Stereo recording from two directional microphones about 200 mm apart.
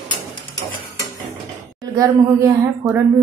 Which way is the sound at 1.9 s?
15° right (ahead or behind).